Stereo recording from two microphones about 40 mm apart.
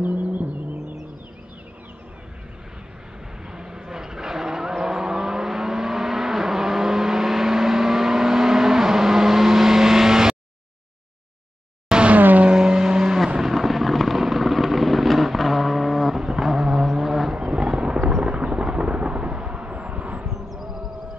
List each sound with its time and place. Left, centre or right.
0.0 s music: right
3.4 s vehicle: centre
12.1 s vehicle: right
12.4 s vehicle: centre
13.4 s vehicle: centre
17.3 s a sound: centre; by 20.2 s right
20.2 s a sound: centre